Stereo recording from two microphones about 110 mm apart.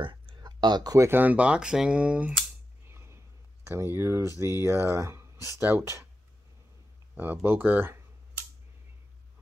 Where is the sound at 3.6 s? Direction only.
20° right (ahead or behind).